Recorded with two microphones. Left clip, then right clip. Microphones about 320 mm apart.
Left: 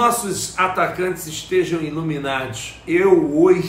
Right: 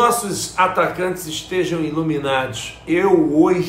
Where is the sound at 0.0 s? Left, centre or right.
Centre.